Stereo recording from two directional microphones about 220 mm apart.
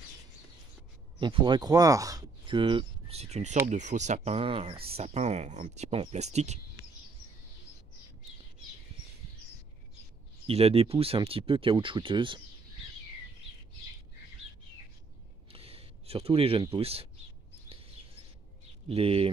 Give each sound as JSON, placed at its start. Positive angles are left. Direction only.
{"t": 1.2, "sound": "speech", "side_deg": -20}
{"t": 10.4, "sound": "speech", "side_deg": -25}
{"t": 15.5, "sound": "a sound", "side_deg": -25}
{"t": 16.6, "sound": "speech", "side_deg": -25}
{"t": 18.9, "sound": "speech", "side_deg": -25}